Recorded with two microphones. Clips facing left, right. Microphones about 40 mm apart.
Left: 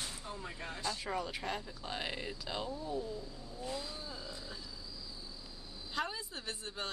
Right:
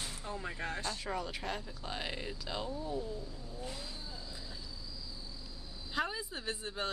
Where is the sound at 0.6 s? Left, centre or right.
Right.